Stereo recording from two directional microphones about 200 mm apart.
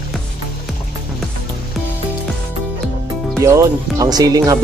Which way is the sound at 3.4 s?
15° right (ahead or behind).